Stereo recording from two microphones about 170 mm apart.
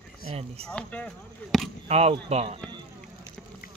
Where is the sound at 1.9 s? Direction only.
40° right (ahead or behind).